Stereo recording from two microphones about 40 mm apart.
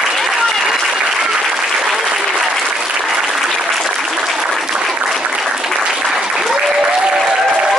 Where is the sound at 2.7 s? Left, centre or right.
Centre.